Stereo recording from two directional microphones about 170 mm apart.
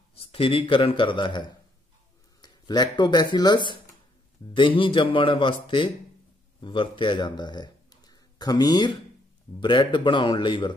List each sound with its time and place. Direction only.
0.1 s a man's voice: 35° left (ahead or behind)